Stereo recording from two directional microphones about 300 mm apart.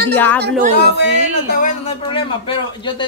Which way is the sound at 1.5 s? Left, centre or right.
Left.